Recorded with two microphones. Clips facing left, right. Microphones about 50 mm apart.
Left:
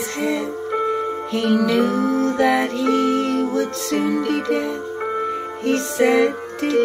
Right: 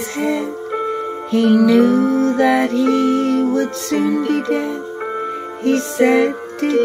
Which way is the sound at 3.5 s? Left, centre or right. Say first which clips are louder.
Right 3 dB; right.